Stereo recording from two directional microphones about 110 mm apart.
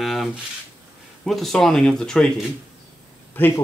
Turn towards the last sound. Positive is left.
turn(degrees=20)  # may be behind; listen again after turning